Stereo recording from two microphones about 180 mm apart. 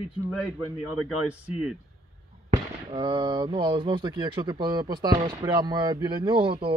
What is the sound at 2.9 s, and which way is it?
Speech, 25° right (ahead or behind).